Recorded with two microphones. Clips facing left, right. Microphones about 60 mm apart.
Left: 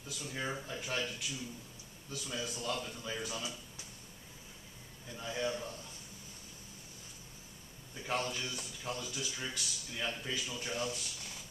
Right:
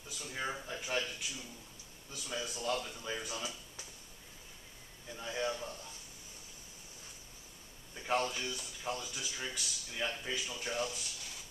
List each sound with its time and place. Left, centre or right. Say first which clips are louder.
0.1 s speech: even; centre
5.1 s speech: even; centre
7.9 s speech: right 3 dB; centre